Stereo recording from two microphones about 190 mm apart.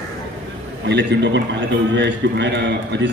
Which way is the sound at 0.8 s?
65° right (ahead or behind).